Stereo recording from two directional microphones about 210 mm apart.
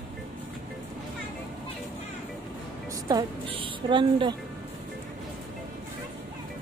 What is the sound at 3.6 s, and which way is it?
Speech, 25° right (ahead or behind).